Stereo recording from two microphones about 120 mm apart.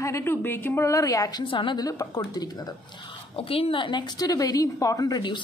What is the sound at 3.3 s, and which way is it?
A woman's voice, 55° left (ahead or behind).